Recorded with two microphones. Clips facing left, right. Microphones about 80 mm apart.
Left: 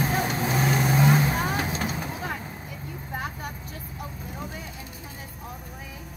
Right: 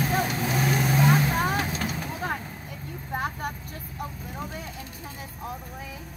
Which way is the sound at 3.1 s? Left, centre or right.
Right.